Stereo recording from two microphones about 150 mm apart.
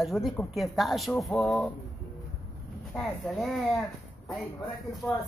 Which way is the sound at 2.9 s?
Centre (ahead or behind).